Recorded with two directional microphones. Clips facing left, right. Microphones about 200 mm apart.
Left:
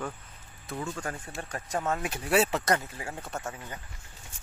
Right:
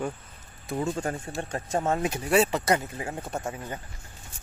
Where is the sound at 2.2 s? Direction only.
5° left (ahead or behind).